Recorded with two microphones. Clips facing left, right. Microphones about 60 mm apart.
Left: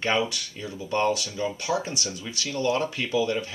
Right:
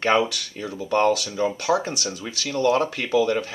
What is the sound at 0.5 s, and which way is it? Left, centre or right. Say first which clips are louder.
Speech: right 6 dB; right.